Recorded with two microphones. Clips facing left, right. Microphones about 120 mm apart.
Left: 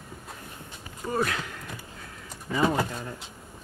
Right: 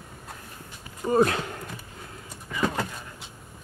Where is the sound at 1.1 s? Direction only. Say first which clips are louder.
Right 7 dB; 30° right (ahead or behind).